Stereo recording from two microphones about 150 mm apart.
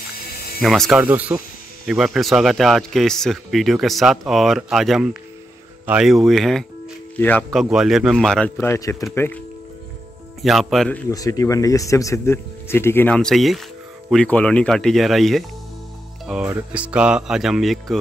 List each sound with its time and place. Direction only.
0.6 s speech: centre (ahead or behind)
1.0 s speech: 10° right (ahead or behind)
7.2 s speech: 10° left (ahead or behind)
7.5 s speech: centre (ahead or behind)
8.5 s speech: 20° left (ahead or behind)
10.4 s speech: centre (ahead or behind)
11.1 s speech: 20° left (ahead or behind); by 17.9 s centre (ahead or behind)